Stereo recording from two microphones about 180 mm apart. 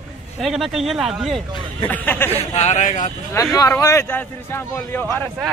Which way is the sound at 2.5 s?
40° left (ahead or behind).